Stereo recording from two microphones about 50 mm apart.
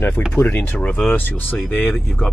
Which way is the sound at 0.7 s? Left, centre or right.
Left.